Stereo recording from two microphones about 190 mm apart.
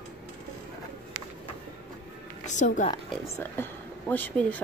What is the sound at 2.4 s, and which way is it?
Music, 40° left (ahead or behind).